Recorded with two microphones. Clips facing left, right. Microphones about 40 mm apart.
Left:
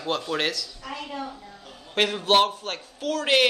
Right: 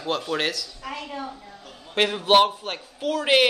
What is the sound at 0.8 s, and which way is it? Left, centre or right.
Speech, right.